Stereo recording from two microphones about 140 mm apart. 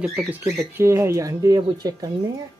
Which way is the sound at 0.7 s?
20° right (ahead or behind).